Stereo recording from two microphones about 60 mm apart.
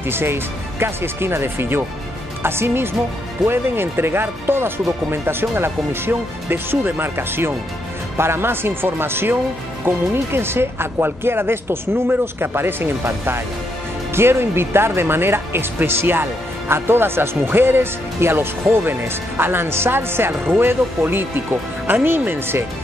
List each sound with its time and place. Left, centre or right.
0.0 s a woman's voice: right